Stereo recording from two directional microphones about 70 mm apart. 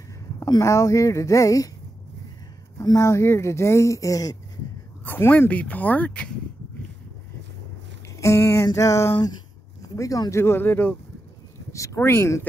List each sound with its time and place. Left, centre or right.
0.6 s speech: left
2.8 s speech: left
3.1 s speech: left
5.0 s speech: left
8.2 s speech: left
9.8 s a sound: left
10.3 s speech: left
11.7 s speech: left